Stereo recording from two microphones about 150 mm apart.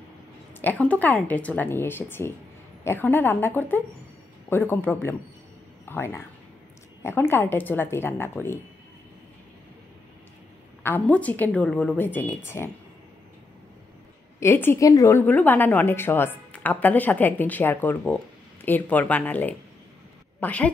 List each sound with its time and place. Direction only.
0.6 s speech: 10° left (ahead or behind)
10.8 s speech: 10° left (ahead or behind)
14.4 s a woman's voice: 15° left (ahead or behind)